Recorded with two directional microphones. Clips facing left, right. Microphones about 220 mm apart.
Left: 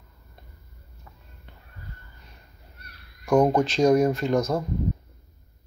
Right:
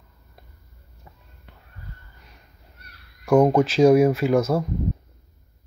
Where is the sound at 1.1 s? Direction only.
20° right (ahead or behind).